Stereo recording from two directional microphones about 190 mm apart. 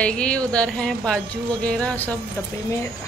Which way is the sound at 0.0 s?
5° left (ahead or behind).